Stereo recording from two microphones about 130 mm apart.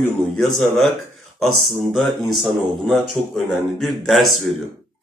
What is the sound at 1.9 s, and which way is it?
Speech, centre (ahead or behind).